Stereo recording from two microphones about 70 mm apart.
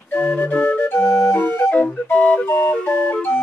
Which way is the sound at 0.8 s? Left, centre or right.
Left.